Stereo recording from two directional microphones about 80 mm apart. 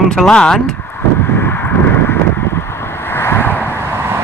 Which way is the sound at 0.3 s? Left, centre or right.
Centre.